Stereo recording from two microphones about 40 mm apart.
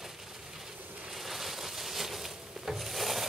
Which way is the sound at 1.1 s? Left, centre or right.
Centre.